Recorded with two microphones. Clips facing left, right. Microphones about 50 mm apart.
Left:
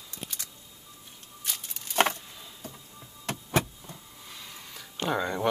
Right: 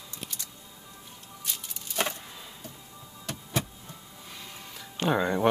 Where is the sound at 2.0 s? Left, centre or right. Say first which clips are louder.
Left 6 dB; left.